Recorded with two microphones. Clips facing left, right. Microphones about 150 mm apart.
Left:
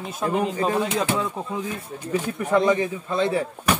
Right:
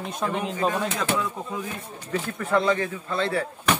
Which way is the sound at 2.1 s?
15° left (ahead or behind).